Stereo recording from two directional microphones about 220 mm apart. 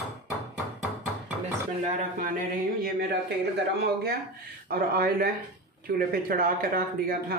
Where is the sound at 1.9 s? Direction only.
35° right (ahead or behind).